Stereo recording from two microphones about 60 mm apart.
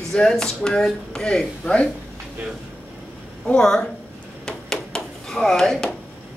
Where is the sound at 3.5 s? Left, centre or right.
Centre.